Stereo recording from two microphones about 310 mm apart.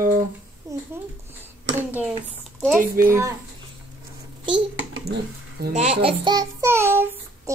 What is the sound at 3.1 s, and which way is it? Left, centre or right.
Speech, centre.